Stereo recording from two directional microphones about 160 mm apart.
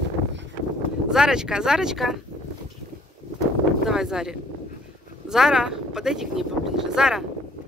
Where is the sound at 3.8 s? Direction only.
5° right (ahead or behind).